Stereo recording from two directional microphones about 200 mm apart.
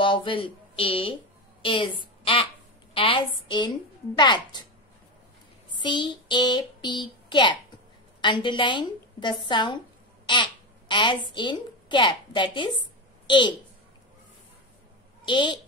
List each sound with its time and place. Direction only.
0.0 s a woman's voice: 25° left (ahead or behind)
2.9 s a woman's voice: 25° left (ahead or behind)
5.7 s a woman's voice: 25° left (ahead or behind)
15.2 s speech: 25° left (ahead or behind)